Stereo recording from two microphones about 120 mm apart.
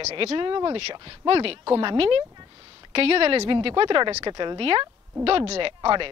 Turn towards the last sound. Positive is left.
turn(degrees=-45)  # may be behind; listen again after turning